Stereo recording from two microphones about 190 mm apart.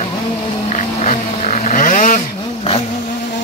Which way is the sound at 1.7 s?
45° left (ahead or behind).